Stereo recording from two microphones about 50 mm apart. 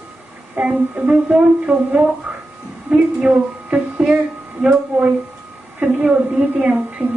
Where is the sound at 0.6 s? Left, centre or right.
Right.